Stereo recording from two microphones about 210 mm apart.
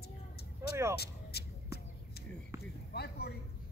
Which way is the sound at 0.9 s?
50° left (ahead or behind).